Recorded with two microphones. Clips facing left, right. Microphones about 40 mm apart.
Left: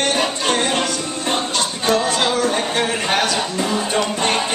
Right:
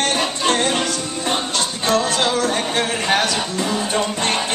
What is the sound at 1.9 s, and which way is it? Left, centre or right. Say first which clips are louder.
Music: even; left.